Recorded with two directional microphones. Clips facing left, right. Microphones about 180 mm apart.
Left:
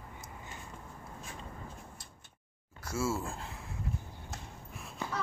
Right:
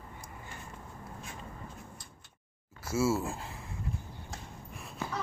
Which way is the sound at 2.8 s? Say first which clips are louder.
Right 5 dB; 5° right (ahead or behind).